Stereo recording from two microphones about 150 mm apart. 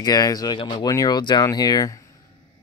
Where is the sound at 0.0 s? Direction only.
25° left (ahead or behind).